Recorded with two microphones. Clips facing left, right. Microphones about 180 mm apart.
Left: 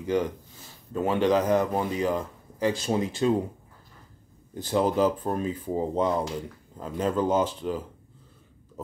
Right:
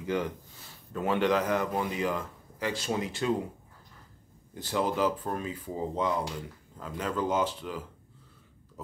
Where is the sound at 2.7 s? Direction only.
20° left (ahead or behind).